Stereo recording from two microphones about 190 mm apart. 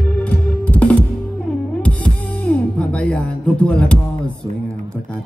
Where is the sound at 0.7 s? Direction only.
5° left (ahead or behind).